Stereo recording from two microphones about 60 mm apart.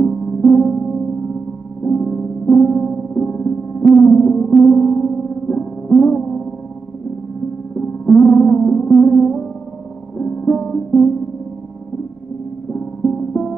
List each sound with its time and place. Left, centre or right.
0.0 s music: centre
7.7 s music: centre
12.7 s music: centre